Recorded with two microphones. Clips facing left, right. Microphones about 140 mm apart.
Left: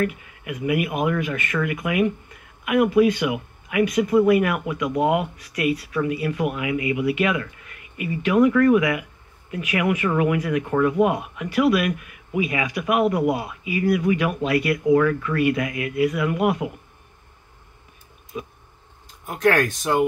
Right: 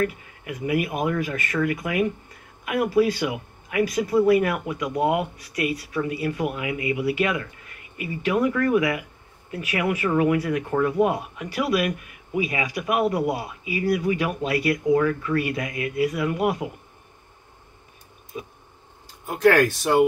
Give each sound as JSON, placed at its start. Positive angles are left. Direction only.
{"t": 0.0, "sound": "speech", "side_deg": -35}
{"t": 19.4, "sound": "speech", "side_deg": -5}